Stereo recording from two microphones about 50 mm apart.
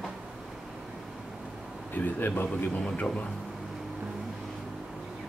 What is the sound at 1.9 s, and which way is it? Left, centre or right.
Speech, left.